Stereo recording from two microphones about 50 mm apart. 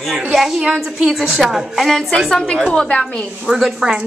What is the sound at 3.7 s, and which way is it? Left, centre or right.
Speech, centre.